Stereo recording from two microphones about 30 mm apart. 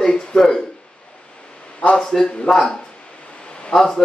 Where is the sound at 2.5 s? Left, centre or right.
Centre.